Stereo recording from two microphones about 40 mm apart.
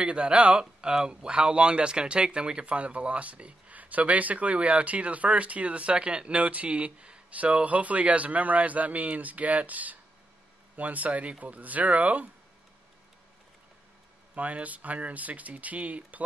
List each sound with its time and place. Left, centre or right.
0.0 s speech: right
0.6 s speech: right
14.3 s speech: right